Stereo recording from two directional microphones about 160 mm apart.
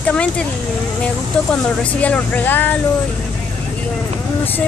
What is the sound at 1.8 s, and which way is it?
Speech, 10° left (ahead or behind).